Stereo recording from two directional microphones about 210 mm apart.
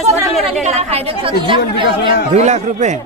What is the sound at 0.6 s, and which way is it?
A woman's voice, 25° right (ahead or behind).